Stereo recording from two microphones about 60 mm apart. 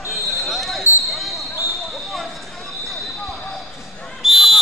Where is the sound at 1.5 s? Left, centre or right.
Left.